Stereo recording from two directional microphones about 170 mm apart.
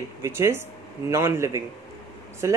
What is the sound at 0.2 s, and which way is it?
A woman's voice, 15° right (ahead or behind).